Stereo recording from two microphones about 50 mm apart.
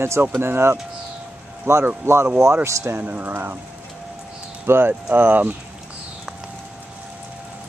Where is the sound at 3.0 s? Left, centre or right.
Right.